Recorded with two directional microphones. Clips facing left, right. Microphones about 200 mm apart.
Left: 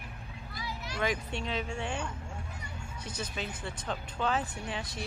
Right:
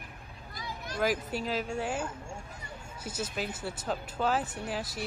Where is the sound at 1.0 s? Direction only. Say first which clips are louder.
Right 3 dB; 5° right (ahead or behind).